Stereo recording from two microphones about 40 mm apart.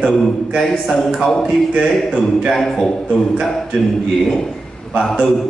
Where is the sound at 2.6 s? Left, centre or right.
Centre.